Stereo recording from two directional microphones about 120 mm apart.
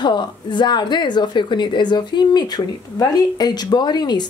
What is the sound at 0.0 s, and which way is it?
A woman's voice, 40° left (ahead or behind).